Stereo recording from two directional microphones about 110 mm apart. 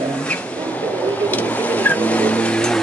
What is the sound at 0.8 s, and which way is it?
Vehicle, 15° left (ahead or behind).